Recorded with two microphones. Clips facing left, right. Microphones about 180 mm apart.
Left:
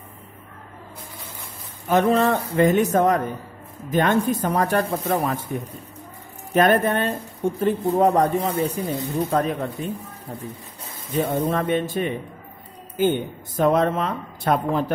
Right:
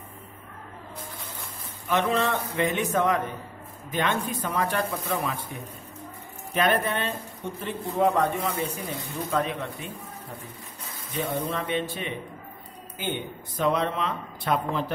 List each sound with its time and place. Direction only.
1.9 s speech: 40° left (ahead or behind)
11.1 s speech: 45° left (ahead or behind)